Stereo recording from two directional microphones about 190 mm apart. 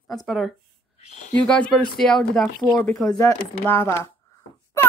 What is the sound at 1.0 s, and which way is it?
Speech, 35° left (ahead or behind).